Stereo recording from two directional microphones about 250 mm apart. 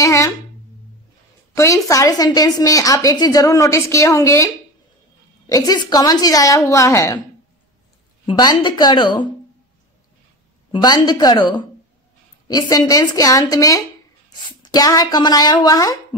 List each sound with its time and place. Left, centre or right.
0.0 s a sound: centre
1.5 s a woman's voice: centre
5.5 s a woman's voice: centre
8.3 s a woman's voice: centre
10.7 s a woman's voice: centre